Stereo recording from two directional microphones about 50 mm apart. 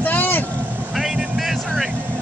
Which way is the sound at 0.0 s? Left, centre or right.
Left.